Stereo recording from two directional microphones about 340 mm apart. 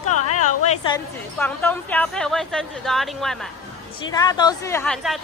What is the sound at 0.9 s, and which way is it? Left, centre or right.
A woman's voice, centre.